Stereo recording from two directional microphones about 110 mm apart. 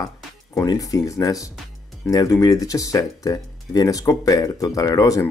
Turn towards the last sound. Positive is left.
turn(degrees=30)  # may be behind; listen again after turning